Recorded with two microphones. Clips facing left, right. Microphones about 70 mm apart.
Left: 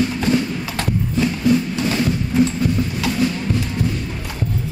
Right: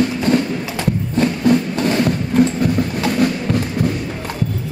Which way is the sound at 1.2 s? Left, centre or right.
Right.